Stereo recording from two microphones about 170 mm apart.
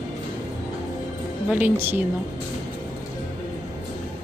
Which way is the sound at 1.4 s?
10° right (ahead or behind).